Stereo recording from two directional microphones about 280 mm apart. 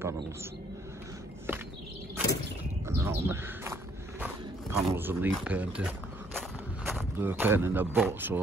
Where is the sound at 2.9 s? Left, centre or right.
Centre.